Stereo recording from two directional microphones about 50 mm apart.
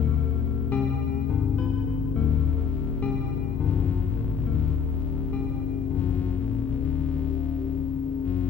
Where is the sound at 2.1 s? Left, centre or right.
Left.